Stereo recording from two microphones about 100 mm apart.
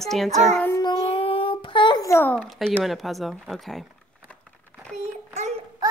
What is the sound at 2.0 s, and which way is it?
Speech, 25° left (ahead or behind).